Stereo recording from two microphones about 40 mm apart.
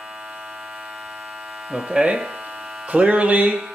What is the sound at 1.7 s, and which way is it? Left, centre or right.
Speech, right.